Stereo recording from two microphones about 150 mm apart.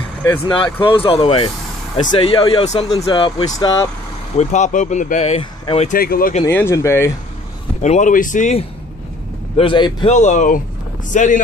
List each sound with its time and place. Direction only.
0.7 s speech: 35° left (ahead or behind)
3.0 s speech: 30° left (ahead or behind)
4.4 s speech: 50° left (ahead or behind)
5.9 s speech: 75° left (ahead or behind)
6.4 s speech: 20° left (ahead or behind)
7.8 s speech: 55° left (ahead or behind)
9.6 s speech: 35° left (ahead or behind)
10.0 s speech: 55° left (ahead or behind)